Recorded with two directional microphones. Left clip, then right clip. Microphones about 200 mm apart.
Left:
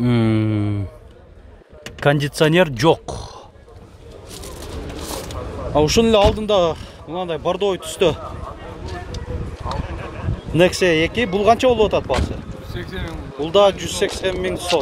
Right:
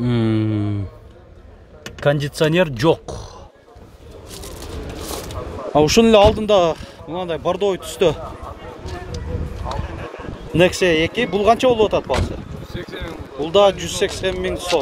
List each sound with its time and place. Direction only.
0.0 s mantra: 10° left (ahead or behind)
2.0 s speech: 15° left (ahead or behind)
5.8 s speech: 20° right (ahead or behind); by 8.2 s centre (ahead or behind)
10.5 s speech: centre (ahead or behind)
12.6 s vehicle: 40° left (ahead or behind)
13.4 s speech: 5° right (ahead or behind)